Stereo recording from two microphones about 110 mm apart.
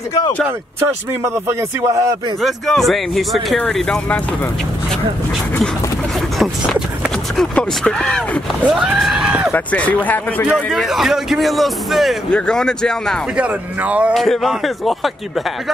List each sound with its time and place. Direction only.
1.2 s speech: 25° right (ahead or behind)
2.4 s a man's voice: centre (ahead or behind)
6.3 s speech: centre (ahead or behind)
8.6 s speech: 10° right (ahead or behind)
9.5 s speech: 15° left (ahead or behind)
10.5 s a man's voice: centre (ahead or behind)
13.4 s speech: 10° right (ahead or behind)
14.1 s a man's voice: centre (ahead or behind)